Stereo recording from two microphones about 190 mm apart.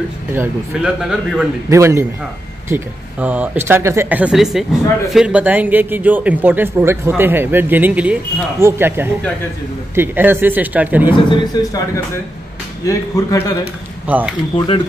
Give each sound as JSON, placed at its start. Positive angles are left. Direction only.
{"t": 0.3, "sound": "speech", "side_deg": -5}
{"t": 1.7, "sound": "speech", "side_deg": -15}
{"t": 11.2, "sound": "a man's voice", "side_deg": 20}
{"t": 12.8, "sound": "speech", "side_deg": 15}
{"t": 14.0, "sound": "speech", "side_deg": -10}